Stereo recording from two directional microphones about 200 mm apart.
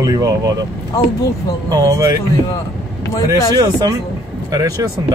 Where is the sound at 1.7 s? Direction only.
15° right (ahead or behind).